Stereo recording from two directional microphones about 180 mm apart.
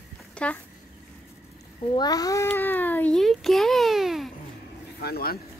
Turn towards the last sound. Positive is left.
turn(degrees=60)  # may be behind; listen again after turning